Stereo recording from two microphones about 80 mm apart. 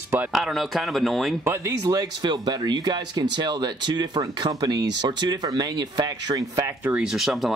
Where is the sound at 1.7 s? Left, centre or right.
Right.